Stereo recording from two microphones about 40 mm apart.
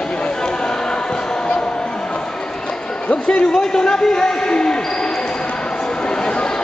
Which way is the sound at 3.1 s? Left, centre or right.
Left.